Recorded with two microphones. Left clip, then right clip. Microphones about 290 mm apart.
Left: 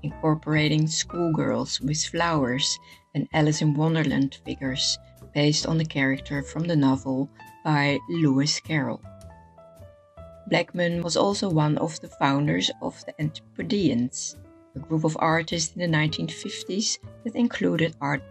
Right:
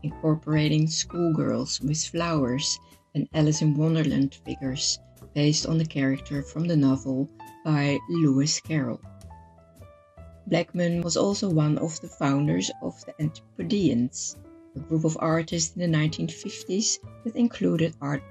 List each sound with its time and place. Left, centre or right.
0.2 s speech: left
10.5 s speech: left